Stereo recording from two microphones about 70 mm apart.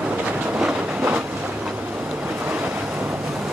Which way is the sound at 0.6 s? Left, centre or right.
Centre.